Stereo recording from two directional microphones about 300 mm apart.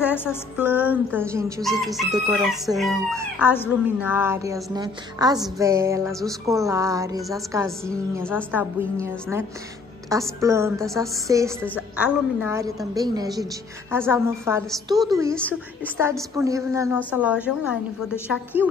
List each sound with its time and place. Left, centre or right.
0.1 s music: centre
0.6 s speech: centre
4.1 s music: centre
11.6 s music: centre
16.2 s speech: centre
18.3 s music: centre